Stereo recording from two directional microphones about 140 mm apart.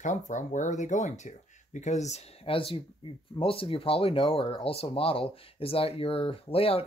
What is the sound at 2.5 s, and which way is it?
Speech, 40° left (ahead or behind).